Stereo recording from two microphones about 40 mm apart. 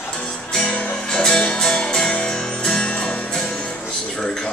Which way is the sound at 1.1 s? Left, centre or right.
Centre.